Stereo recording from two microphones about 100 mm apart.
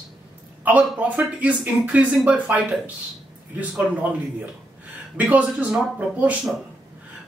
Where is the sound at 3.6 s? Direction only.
15° right (ahead or behind).